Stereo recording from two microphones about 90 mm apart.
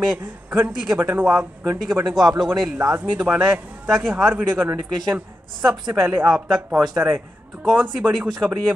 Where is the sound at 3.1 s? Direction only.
15° right (ahead or behind).